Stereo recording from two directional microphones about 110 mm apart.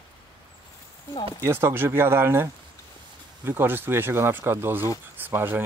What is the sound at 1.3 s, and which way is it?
Speech, 20° right (ahead or behind).